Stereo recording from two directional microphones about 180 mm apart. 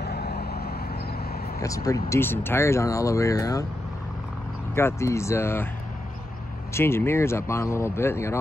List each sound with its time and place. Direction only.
0.0 s vehicle: 65° left (ahead or behind)
1.6 s speech: 20° left (ahead or behind)
4.7 s speech: 15° left (ahead or behind)
6.7 s speech: 15° left (ahead or behind)